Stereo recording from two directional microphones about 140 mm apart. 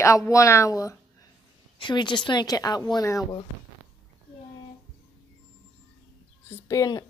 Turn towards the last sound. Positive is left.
turn(degrees=25)  # may be behind; listen again after turning